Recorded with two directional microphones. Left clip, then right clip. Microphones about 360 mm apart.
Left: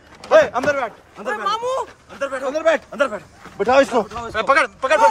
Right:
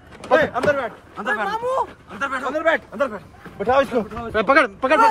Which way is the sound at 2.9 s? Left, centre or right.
Left.